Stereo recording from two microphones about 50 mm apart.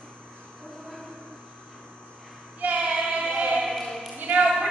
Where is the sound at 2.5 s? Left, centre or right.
Right.